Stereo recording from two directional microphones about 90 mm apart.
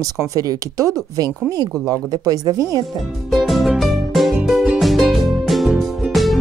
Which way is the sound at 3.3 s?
Centre (ahead or behind).